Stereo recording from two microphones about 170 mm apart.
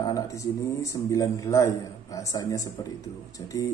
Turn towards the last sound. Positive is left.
turn(degrees=20)  # may be behind; listen again after turning